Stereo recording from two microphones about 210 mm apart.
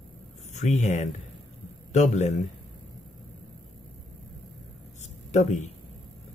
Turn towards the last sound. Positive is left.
turn(degrees=35)  # may be behind; listen again after turning